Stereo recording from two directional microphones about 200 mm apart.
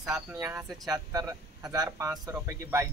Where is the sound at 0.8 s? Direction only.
15° right (ahead or behind).